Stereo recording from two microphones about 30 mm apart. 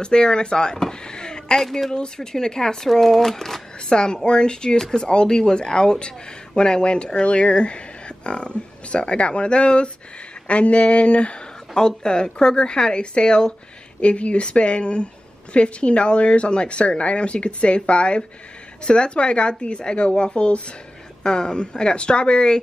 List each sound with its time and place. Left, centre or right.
0.0 s a woman's voice: left
0.7 s a sound: left
1.6 s speech: centre
1.9 s a woman's voice: left
3.9 s a woman's voice: left
4.7 s speech: centre
5.0 s speech: left
11.7 s a woman's voice: left
14.0 s speech: left
21.2 s a woman's voice: left